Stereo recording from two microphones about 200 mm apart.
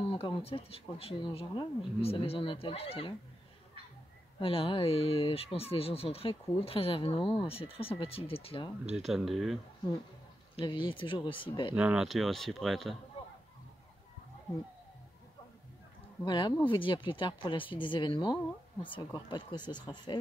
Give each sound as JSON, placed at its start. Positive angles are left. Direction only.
{"t": 0.0, "sound": "speech", "side_deg": 25}
{"t": 4.4, "sound": "speech", "side_deg": 25}
{"t": 8.9, "sound": "speech", "side_deg": 0}
{"t": 10.5, "sound": "speech", "side_deg": 25}
{"t": 11.7, "sound": "speech", "side_deg": -5}
{"t": 16.3, "sound": "speech", "side_deg": 20}